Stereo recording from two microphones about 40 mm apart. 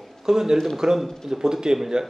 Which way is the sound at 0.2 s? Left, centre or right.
Centre.